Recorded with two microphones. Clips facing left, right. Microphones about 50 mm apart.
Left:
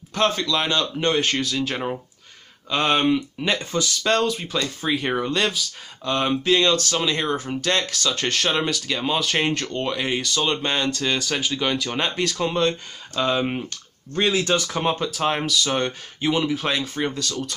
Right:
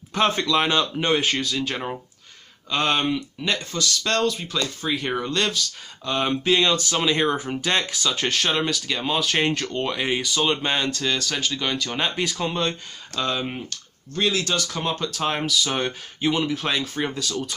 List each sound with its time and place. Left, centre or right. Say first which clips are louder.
0.1 s speech: right 1 dB; centre
13.2 s speech: left 4 dB; centre
15.0 s speech: left 2 dB; centre